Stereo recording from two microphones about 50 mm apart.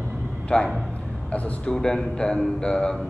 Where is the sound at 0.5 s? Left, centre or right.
Left.